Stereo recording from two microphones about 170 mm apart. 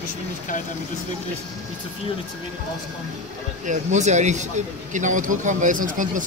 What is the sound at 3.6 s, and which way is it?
Speech, 45° right (ahead or behind).